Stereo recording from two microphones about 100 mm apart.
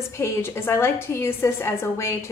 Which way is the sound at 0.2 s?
25° left (ahead or behind).